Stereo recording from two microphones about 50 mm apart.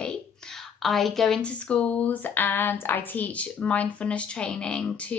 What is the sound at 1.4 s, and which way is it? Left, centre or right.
Speech, left.